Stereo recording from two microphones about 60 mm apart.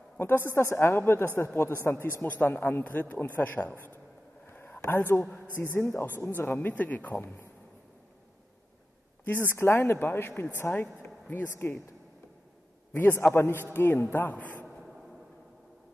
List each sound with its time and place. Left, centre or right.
0.2 s speech: left
2.2 s speech: left
4.5 s whispering: left
4.8 s speech: left
9.2 s speech: left
9.6 s speech: left
12.9 s speech: left
14.3 s a man's voice: left